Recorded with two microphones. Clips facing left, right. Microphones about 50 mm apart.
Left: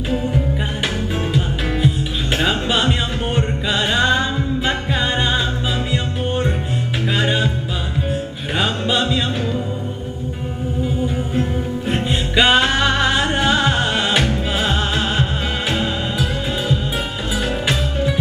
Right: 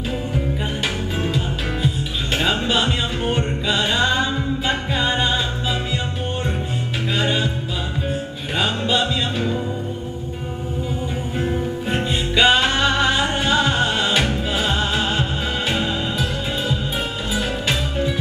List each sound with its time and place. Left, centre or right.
2.3 s music: centre
7.2 s music: centre
8.5 s music: centre
12.4 s music: centre
15.7 s music: centre